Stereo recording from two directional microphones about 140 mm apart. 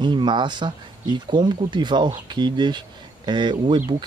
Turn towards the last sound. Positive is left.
turn(degrees=-35)  # may be behind; listen again after turning